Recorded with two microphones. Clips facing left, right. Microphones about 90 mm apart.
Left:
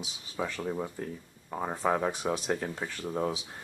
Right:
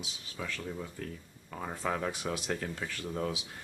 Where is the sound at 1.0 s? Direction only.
25° left (ahead or behind).